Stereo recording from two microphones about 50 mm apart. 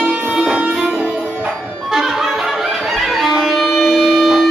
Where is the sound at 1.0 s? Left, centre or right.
Centre.